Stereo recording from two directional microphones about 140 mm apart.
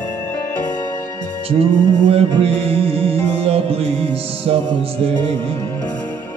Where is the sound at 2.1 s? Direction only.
45° right (ahead or behind).